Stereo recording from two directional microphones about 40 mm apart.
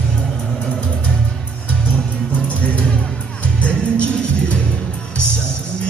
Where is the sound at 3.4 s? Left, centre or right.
Left.